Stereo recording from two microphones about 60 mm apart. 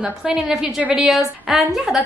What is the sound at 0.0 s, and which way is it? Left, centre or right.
A woman's voice, centre.